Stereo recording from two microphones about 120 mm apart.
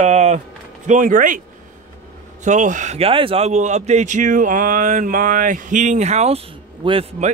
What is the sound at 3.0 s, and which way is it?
Speech, 50° right (ahead or behind).